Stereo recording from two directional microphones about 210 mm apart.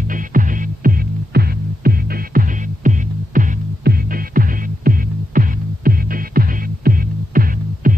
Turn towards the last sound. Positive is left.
turn(degrees=-40)  # may be behind; listen again after turning